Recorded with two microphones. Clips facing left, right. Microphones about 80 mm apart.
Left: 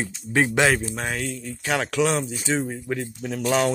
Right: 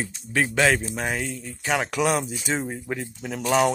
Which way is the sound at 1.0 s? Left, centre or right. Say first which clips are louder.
Even; centre.